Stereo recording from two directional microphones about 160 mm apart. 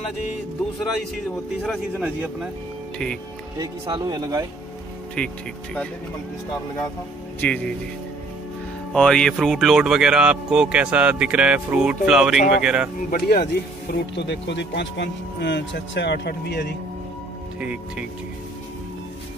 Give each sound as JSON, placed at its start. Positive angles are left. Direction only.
{"t": 1.7, "sound": "a man's voice", "side_deg": -5}
{"t": 3.5, "sound": "speech", "side_deg": -25}
{"t": 7.3, "sound": "speech", "side_deg": 10}
{"t": 8.9, "sound": "speech", "side_deg": 5}
{"t": 13.1, "sound": "speech", "side_deg": 80}
{"t": 17.6, "sound": "a man's voice", "side_deg": -5}